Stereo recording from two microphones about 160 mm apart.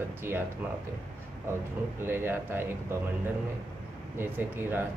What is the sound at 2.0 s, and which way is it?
Speech, 15° right (ahead or behind).